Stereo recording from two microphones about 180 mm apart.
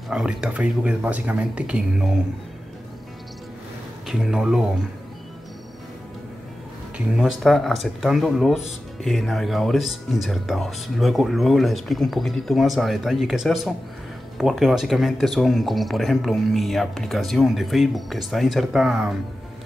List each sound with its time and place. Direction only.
0.1 s speech: 5° right (ahead or behind)
4.1 s speech: 5° right (ahead or behind)
7.2 s speech: centre (ahead or behind)